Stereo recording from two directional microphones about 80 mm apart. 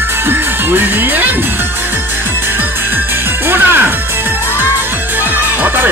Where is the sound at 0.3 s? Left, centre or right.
Right.